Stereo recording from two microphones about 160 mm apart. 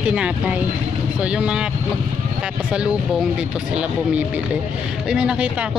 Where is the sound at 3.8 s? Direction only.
10° right (ahead or behind).